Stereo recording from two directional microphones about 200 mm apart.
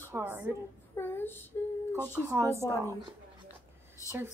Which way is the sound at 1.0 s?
10° left (ahead or behind).